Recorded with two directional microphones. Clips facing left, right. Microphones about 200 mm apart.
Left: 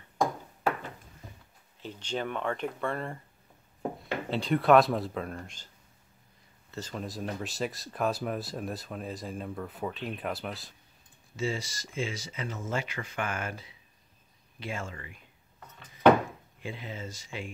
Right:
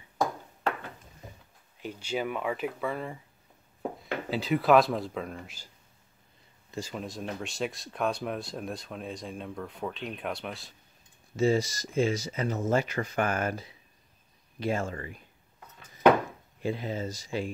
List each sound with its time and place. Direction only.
1.8 s speech: 10° right (ahead or behind)
6.7 s speech: 10° right (ahead or behind)
11.3 s speech: 40° right (ahead or behind)
16.6 s speech: 40° right (ahead or behind)